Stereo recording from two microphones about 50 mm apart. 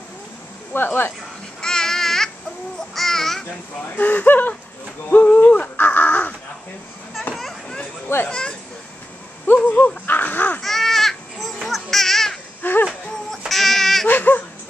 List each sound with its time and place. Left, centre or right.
0.7 s speech: left
1.6 s babbling: centre
2.9 s a child's voice: centre
3.9 s speech: left
5.2 s a sound: left
7.3 s a sound: centre
8.3 s speech: centre
9.7 s speech: left
10.0 s caw: left
10.6 s baby cry: centre
12.6 s a sound: left
13.5 s music: centre
14.0 s speech: left